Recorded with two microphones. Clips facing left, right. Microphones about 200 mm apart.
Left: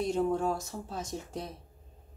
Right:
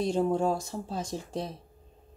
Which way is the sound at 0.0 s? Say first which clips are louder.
Right 3 dB; 30° right (ahead or behind).